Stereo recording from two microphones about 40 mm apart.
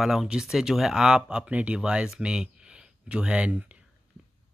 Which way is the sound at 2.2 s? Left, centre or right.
Right.